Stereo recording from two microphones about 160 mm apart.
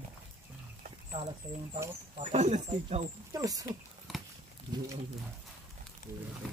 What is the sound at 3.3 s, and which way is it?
Speech, 20° right (ahead or behind).